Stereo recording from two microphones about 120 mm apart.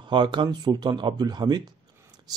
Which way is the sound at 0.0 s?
40° right (ahead or behind).